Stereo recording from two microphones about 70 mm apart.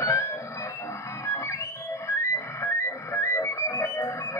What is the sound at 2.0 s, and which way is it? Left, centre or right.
Music, left.